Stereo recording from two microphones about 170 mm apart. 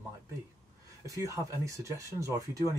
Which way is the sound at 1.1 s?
20° right (ahead or behind).